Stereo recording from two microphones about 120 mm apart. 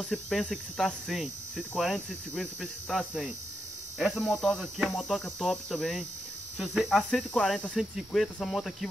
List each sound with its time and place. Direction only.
0.0 s speech: 5° left (ahead or behind)
4.5 s speech: 5° right (ahead or behind)
7.0 s speech: 5° left (ahead or behind)